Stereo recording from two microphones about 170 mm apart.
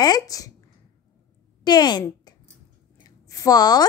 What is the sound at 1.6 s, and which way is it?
Speech, 25° left (ahead or behind).